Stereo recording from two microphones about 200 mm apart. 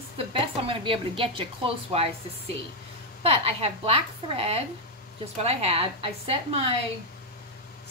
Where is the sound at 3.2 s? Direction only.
30° right (ahead or behind).